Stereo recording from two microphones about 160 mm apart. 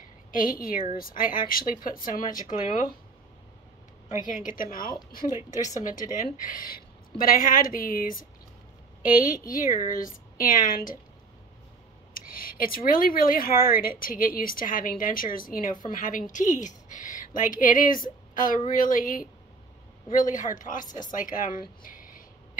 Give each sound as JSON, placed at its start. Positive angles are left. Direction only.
{"t": 0.3, "sound": "speech", "side_deg": 60}
{"t": 4.3, "sound": "speech", "side_deg": 60}
{"t": 5.3, "sound": "a woman's voice", "side_deg": -15}
{"t": 5.8, "sound": "a woman's voice", "side_deg": 55}
{"t": 9.5, "sound": "speech", "side_deg": 55}
{"t": 12.1, "sound": "speech", "side_deg": 60}